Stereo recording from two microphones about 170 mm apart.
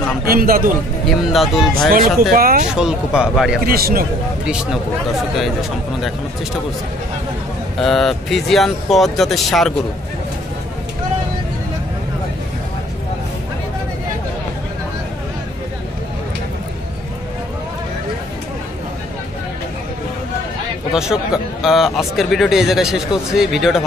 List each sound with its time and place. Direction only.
0.2 s a man's voice: 60° right (ahead or behind)
1.0 s a man's voice: centre (ahead or behind)
1.9 s a man's voice: 60° right (ahead or behind)
2.7 s a man's voice: 5° right (ahead or behind)
3.6 s a man's voice: 60° right (ahead or behind)
7.8 s a man's voice: centre (ahead or behind)
20.9 s a man's voice: 5° right (ahead or behind)